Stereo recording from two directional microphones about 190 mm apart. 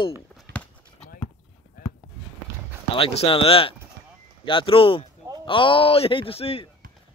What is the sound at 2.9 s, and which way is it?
A man's voice, 30° left (ahead or behind).